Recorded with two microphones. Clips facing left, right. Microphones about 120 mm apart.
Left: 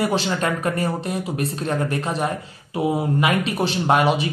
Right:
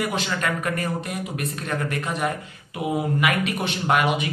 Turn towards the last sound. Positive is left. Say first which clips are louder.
# left 3 dB
turn(degrees=30)  # may be behind; listen again after turning